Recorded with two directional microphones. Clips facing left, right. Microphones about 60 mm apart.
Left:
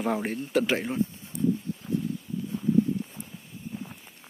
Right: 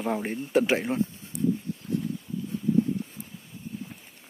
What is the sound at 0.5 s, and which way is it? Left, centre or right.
Speech, right.